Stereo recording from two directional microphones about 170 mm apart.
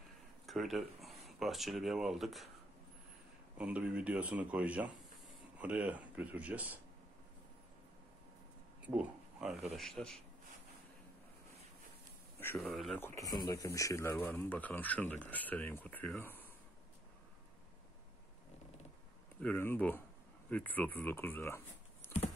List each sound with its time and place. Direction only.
0.5 s speech: centre (ahead or behind)
3.5 s speech: 5° right (ahead or behind)
8.8 s a man's voice: 5° right (ahead or behind)
12.4 s speech: 10° left (ahead or behind)
12.7 s a man's voice: centre (ahead or behind)
13.0 s speech: 20° left (ahead or behind)
19.4 s speech: 10° left (ahead or behind)